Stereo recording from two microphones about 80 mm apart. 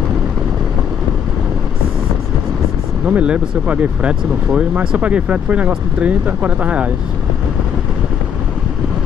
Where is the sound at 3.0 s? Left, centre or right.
Centre.